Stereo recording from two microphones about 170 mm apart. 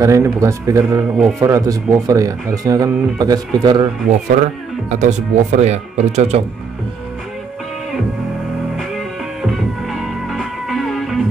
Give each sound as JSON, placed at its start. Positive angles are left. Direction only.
{"t": 0.0, "sound": "speech", "side_deg": -15}
{"t": 4.8, "sound": "speech", "side_deg": -40}
{"t": 8.7, "sound": "music", "side_deg": 0}